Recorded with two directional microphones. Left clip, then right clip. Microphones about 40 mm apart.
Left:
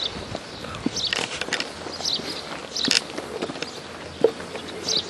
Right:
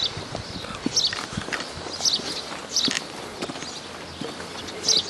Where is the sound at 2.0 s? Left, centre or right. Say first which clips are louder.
Right 3 dB; centre.